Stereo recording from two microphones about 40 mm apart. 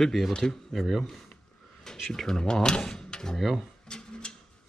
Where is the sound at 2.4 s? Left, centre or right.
Left.